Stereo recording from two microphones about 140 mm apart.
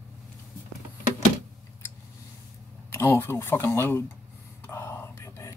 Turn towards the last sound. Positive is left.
turn(degrees=20)  # may be behind; listen again after turning